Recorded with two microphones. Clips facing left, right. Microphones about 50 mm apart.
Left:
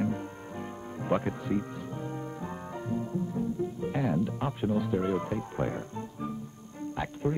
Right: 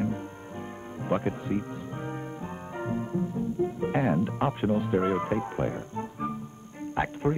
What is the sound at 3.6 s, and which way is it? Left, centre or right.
Speech, right.